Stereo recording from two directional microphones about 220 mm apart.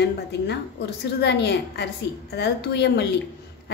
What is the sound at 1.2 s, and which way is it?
A woman's voice, 50° left (ahead or behind).